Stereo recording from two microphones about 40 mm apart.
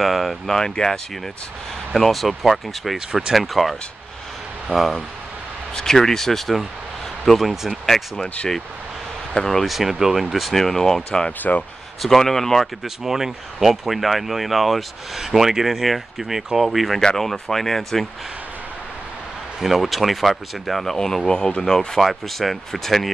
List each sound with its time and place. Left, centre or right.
0.0 s speech: centre
0.5 s speech: centre
2.0 s speech: centre
5.8 s speech: centre
9.3 s speech: centre
9.7 s speech: centre
10.5 s speech: centre
11.1 s speech: left
12.0 s speech: centre
12.8 s speech: centre
17.0 s speech: centre
19.6 s speech: centre
21.3 s speech: centre